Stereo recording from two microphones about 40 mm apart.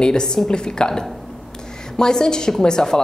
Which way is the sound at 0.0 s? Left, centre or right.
Centre.